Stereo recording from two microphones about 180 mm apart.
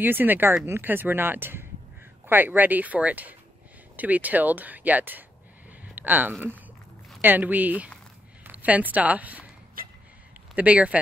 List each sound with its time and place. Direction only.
0.0 s speech: 10° right (ahead or behind)
9.8 s a sound: 55° right (ahead or behind)
10.5 s speech: 5° right (ahead or behind)